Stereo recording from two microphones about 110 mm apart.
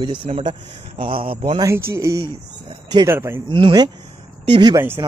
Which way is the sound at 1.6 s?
25° right (ahead or behind).